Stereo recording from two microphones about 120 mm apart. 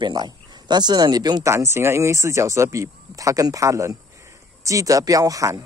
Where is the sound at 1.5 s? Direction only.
25° right (ahead or behind).